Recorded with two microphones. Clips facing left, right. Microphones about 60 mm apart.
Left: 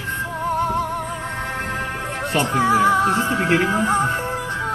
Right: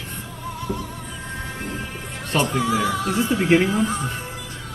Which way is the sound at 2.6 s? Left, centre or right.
Left.